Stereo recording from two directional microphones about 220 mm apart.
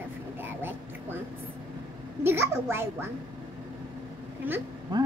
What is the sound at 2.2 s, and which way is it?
Speech, 10° right (ahead or behind).